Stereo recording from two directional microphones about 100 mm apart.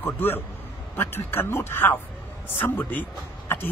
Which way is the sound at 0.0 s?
20° left (ahead or behind).